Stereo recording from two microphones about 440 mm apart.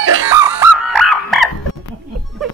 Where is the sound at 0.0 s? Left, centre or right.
Right.